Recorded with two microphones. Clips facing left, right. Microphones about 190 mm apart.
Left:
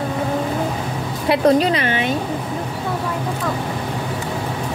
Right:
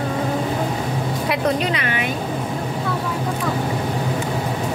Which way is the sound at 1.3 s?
35° left (ahead or behind).